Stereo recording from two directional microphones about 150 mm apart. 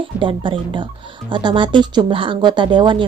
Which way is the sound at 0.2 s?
35° right (ahead or behind).